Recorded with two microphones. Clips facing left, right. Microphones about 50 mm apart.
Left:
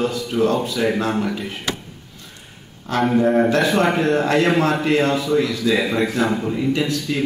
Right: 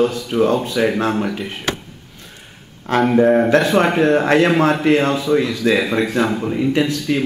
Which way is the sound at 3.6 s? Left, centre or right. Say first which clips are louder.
Right 2 dB; centre.